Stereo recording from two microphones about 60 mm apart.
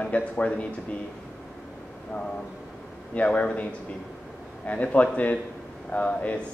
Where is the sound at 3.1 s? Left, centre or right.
Left.